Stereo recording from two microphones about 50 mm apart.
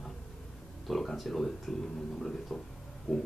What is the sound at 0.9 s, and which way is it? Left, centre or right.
Speech, centre.